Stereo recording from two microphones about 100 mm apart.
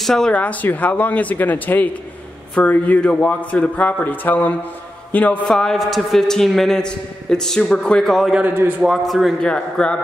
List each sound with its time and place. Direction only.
0.0 s a man's voice: 5° left (ahead or behind)
8.3 s a man's voice: 15° right (ahead or behind)
8.8 s a man's voice: centre (ahead or behind)